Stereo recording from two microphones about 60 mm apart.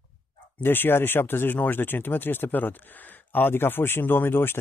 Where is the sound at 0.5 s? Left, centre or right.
Left.